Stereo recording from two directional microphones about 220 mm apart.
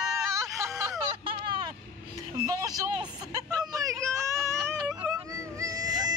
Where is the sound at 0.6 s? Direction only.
15° right (ahead or behind).